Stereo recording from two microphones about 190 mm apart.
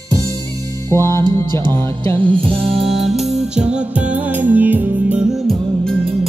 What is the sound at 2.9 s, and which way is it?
Music, centre (ahead or behind).